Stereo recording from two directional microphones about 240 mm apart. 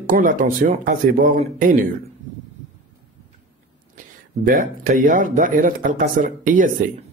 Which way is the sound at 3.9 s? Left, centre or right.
Right.